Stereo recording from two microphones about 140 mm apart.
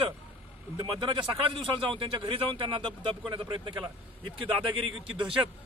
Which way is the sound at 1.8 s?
40° right (ahead or behind).